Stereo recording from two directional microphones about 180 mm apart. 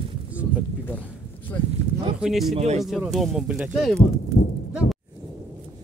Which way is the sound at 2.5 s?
35° right (ahead or behind).